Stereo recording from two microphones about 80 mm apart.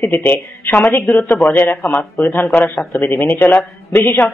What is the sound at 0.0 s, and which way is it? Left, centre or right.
A man's voice, left.